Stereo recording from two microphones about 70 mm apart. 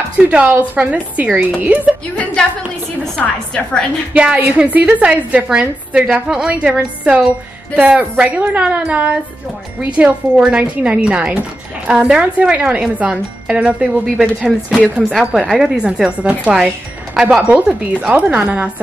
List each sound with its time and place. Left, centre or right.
0.3 s a woman's voice: right
3.2 s a woman's voice: centre
4.1 s a woman's voice: centre
14.0 s a woman's voice: centre; by 18.7 s right